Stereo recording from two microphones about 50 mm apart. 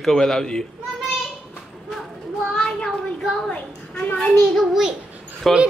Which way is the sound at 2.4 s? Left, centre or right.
Centre.